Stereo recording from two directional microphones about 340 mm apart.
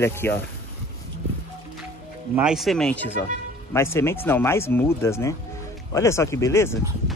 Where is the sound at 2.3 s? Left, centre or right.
Centre.